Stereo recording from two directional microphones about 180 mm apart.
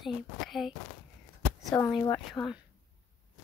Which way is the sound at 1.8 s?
5° left (ahead or behind).